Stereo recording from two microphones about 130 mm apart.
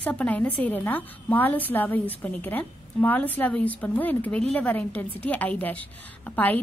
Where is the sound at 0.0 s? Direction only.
10° left (ahead or behind).